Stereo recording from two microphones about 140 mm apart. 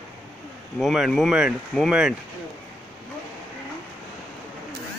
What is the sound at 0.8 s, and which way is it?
Speech, centre (ahead or behind).